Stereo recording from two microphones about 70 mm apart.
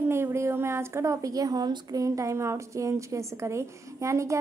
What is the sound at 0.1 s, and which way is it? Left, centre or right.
Speech, right.